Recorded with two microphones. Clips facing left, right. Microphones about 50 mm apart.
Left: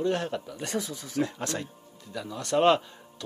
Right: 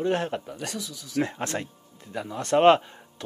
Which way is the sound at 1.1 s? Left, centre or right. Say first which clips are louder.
Right 2 dB; right.